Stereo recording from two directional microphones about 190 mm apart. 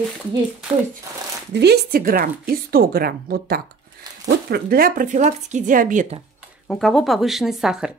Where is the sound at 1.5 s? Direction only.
60° right (ahead or behind); by 6.1 s 40° right (ahead or behind).